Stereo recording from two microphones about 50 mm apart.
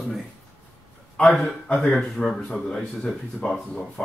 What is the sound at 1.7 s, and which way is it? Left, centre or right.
Speech, centre.